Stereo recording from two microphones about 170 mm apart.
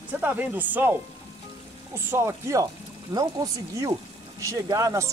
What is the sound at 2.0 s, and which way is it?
Speech, 15° right (ahead or behind).